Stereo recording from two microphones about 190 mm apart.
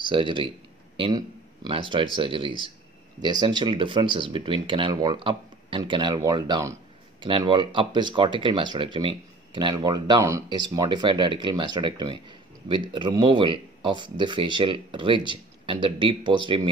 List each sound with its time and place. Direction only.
0.1 s a man's voice: 25° right (ahead or behind)